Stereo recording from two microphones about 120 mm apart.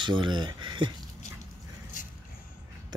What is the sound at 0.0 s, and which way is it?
Speech, 40° right (ahead or behind).